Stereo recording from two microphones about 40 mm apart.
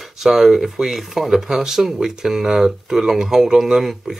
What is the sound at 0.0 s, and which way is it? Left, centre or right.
Speech, centre.